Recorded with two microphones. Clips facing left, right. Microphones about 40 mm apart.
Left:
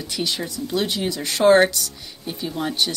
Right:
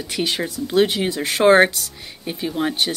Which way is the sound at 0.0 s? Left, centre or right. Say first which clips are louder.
Right 3 dB; right.